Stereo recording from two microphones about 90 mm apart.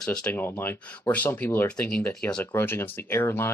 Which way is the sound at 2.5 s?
25° left (ahead or behind).